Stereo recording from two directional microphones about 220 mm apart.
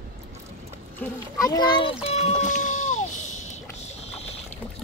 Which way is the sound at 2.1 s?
30° left (ahead or behind).